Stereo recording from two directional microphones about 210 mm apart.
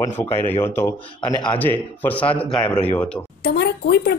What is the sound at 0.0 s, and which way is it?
Speech, 10° left (ahead or behind).